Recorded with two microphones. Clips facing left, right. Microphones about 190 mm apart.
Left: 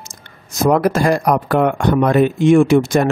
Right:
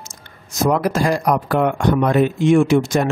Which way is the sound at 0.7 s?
55° left (ahead or behind).